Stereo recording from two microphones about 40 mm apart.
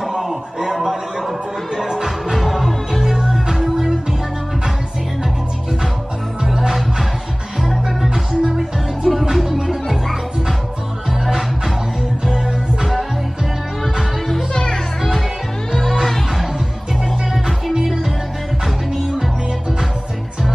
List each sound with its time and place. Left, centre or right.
0.1 s a sound: centre
1.8 s music: centre
3.6 s music: centre
6.4 s music: centre
7.8 s music: centre
11.1 s music: centre
13.9 s music: centre
14.5 s music: centre
15.7 s music: centre
17.8 s music: centre